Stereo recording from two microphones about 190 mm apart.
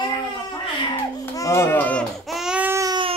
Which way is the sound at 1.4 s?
15° left (ahead or behind).